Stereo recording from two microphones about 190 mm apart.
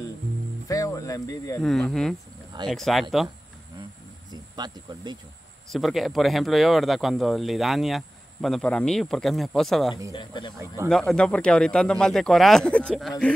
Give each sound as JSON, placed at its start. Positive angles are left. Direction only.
{"t": 0.7, "sound": "a sound", "side_deg": 15}
{"t": 1.6, "sound": "a man's voice", "side_deg": 0}
{"t": 4.3, "sound": "speech", "side_deg": -20}
{"t": 5.7, "sound": "a man's voice", "side_deg": 0}
{"t": 10.1, "sound": "speech", "side_deg": 25}
{"t": 10.9, "sound": "a man's voice", "side_deg": 0}